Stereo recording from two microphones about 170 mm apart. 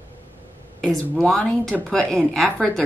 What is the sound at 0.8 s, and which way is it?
Speech, 5° left (ahead or behind).